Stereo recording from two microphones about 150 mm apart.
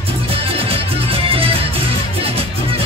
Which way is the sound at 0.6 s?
40° right (ahead or behind).